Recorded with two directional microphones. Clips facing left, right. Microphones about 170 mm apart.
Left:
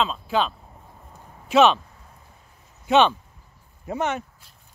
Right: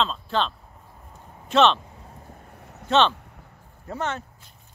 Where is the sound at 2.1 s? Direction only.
45° right (ahead or behind); by 3.6 s 70° right (ahead or behind).